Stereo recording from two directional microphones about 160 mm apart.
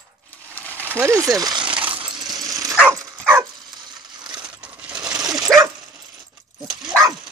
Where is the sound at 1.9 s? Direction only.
30° right (ahead or behind).